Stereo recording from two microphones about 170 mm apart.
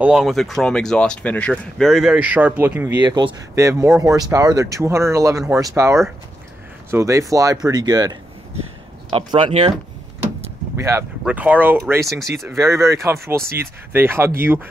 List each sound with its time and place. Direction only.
0.0 s speech: 5° right (ahead or behind)
3.1 s speech: 25° right (ahead or behind)
10.8 s speech: 15° right (ahead or behind)
12.2 s speech: centre (ahead or behind)
12.5 s speech: 15° right (ahead or behind)